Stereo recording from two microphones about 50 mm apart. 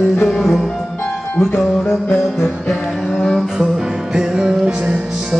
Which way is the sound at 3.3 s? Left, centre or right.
Centre.